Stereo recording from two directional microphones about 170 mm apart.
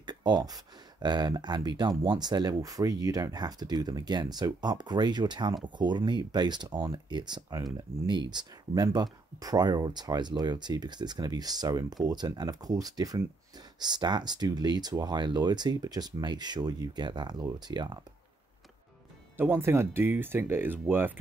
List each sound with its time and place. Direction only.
0.0 s speech: 25° right (ahead or behind)
19.3 s speech: 10° right (ahead or behind)